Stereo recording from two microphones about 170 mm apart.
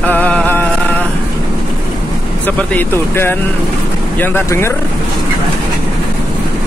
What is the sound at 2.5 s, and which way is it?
Speech, 10° left (ahead or behind).